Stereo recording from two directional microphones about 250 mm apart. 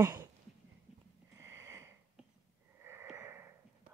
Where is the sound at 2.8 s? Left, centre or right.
Centre.